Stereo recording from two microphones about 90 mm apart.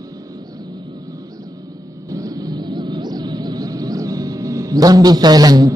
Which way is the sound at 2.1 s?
45° right (ahead or behind).